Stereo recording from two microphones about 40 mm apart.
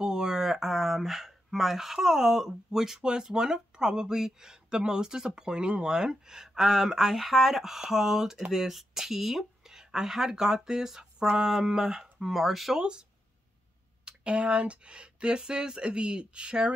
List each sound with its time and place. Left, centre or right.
0.0 s a sound: centre
2.0 s speech: centre
14.0 s speech: right